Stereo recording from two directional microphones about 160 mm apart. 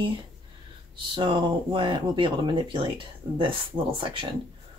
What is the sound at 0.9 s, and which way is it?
Speech, 30° right (ahead or behind).